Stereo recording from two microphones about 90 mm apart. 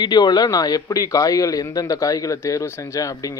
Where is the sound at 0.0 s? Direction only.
50° left (ahead or behind).